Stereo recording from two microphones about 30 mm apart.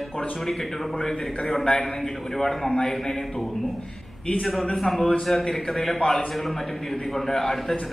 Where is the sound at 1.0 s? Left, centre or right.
Centre.